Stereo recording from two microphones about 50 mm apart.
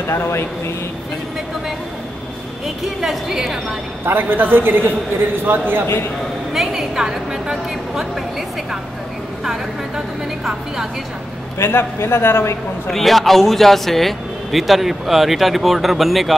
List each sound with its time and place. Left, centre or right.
0.0 s a man's voice: left
3.0 s a woman's voice: centre
4.0 s a man's voice: right
6.5 s a woman's voice: centre
9.4 s a woman's voice: centre
11.5 s a man's voice: left
12.9 s speech: centre